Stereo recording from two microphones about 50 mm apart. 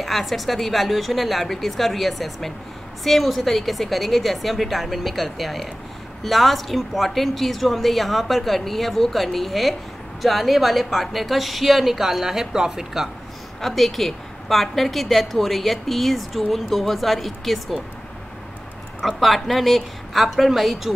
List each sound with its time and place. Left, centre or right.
0.0 s a woman's voice: centre
13.6 s a woman's voice: centre
18.9 s a woman's voice: centre